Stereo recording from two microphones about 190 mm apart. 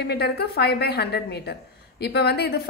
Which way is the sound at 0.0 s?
60° left (ahead or behind).